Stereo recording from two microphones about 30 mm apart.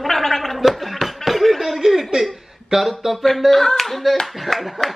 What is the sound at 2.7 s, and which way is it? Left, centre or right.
Speech, right.